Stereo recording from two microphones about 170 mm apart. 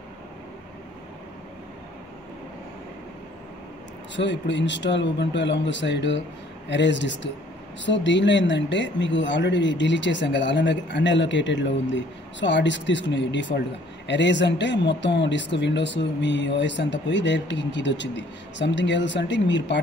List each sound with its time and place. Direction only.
4.1 s speech: 90° left